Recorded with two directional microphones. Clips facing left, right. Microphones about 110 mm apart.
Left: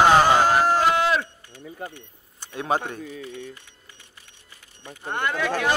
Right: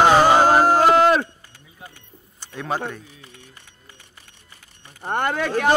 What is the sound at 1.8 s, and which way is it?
Speech, 55° left (ahead or behind).